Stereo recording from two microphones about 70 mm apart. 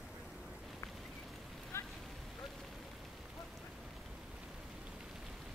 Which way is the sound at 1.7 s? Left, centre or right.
Left.